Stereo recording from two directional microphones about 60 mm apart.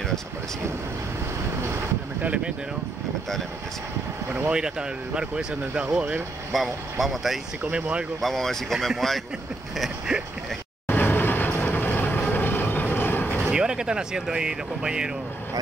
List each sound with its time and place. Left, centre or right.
1.6 s boat: right
2.2 s speech: centre
4.5 s speech: centre
6.5 s speech: centre
7.6 s speech: right
8.2 s speech: centre
10.9 s vehicle: left
12.3 s train: left
13.5 s speech: centre